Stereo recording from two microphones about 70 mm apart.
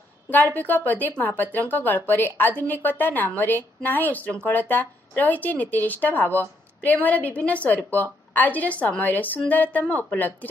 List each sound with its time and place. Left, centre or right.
0.3 s a woman's voice: left